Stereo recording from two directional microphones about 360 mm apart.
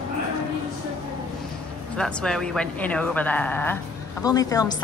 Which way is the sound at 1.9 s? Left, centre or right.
Centre.